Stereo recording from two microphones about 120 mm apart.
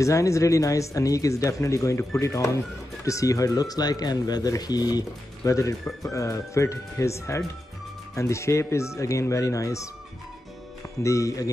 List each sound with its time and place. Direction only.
0.0 s speech: 25° left (ahead or behind)
11.0 s speech: 25° left (ahead or behind)